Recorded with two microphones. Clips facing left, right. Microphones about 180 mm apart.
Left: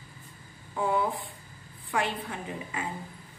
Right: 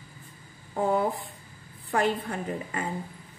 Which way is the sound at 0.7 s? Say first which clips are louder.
Right 3 dB; 45° right (ahead or behind).